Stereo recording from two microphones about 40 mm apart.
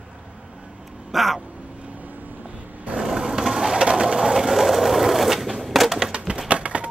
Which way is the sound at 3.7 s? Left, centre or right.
Centre.